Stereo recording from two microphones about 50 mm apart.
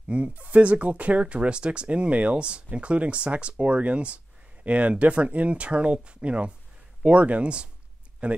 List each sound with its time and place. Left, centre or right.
0.1 s speech: right